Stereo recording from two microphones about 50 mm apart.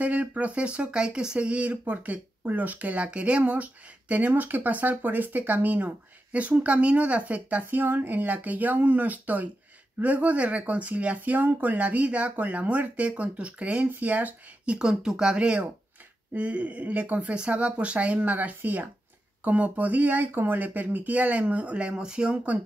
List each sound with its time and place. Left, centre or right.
0.0 s speech: right
14.8 s speech: centre